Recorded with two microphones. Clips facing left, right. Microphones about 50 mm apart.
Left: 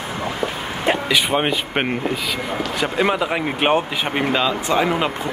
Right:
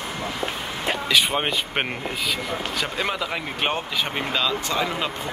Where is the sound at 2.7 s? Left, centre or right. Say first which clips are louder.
Left 9 dB; left.